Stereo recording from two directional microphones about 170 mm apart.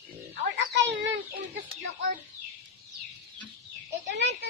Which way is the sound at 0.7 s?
90° right.